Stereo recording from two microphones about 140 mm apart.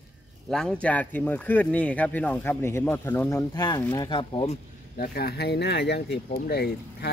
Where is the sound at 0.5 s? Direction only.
5° left (ahead or behind); by 4.5 s 35° left (ahead or behind).